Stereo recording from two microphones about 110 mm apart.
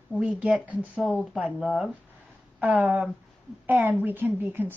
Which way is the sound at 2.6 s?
10° right (ahead or behind).